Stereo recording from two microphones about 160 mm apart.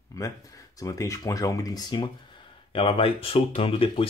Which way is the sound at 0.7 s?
20° left (ahead or behind).